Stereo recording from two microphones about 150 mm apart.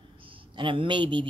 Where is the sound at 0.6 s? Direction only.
35° right (ahead or behind).